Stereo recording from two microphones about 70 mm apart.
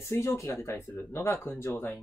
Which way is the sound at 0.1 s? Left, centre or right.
Left.